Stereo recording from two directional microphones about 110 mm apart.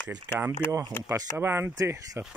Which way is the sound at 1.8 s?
30° right (ahead or behind).